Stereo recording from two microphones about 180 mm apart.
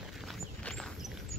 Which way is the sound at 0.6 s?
5° left (ahead or behind).